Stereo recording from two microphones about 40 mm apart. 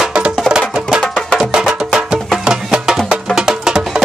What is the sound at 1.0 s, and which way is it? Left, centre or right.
Music, left.